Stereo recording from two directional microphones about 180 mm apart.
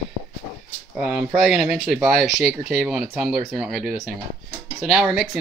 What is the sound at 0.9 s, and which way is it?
Speech, 5° right (ahead or behind).